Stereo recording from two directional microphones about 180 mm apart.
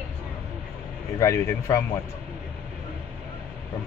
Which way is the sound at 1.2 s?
15° left (ahead or behind).